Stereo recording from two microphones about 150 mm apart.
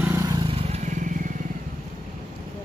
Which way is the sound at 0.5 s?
50° right (ahead or behind).